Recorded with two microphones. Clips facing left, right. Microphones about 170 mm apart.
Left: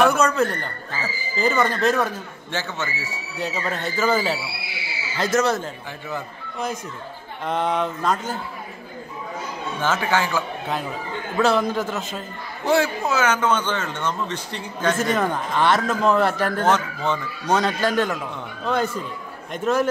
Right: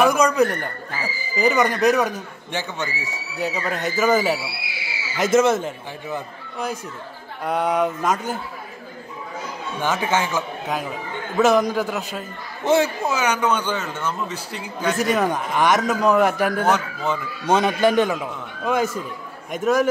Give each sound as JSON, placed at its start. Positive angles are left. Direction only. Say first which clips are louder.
{"t": 0.0, "sound": "a man's voice", "louder": "right 1 dB", "side_deg": -10}
{"t": 9.8, "sound": "a man's voice", "louder": "even", "side_deg": -15}
{"t": 17.5, "sound": "a man's voice", "louder": "right 3 dB", "side_deg": -20}